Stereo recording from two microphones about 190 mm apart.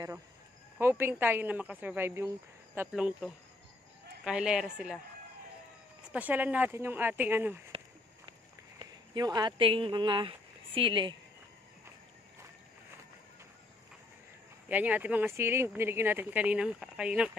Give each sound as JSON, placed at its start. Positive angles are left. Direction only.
{"t": 0.7, "sound": "a woman's voice", "side_deg": -10}
{"t": 6.1, "sound": "speech", "side_deg": -10}
{"t": 8.7, "sound": "speech", "side_deg": -20}
{"t": 14.7, "sound": "speech", "side_deg": -10}